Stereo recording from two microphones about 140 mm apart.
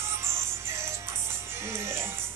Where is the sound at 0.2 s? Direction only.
20° right (ahead or behind).